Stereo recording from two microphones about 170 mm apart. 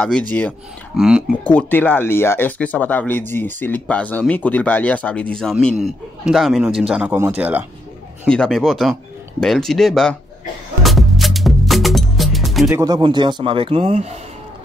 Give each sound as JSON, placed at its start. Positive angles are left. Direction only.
{"t": 0.3, "sound": "speech", "side_deg": 10}
{"t": 0.9, "sound": "speech", "side_deg": -5}
{"t": 1.4, "sound": "speech", "side_deg": 10}
{"t": 8.3, "sound": "speech", "side_deg": 5}
{"t": 10.8, "sound": "music", "side_deg": 0}
{"t": 12.7, "sound": "speech", "side_deg": -25}